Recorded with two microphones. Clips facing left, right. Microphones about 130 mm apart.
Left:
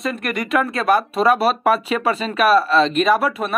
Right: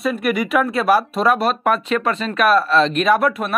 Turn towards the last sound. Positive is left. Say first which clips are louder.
# right 1 dB
turn(degrees=0)  # may be behind; listen again after turning